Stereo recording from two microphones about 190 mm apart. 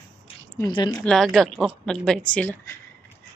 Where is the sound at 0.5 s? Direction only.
20° left (ahead or behind).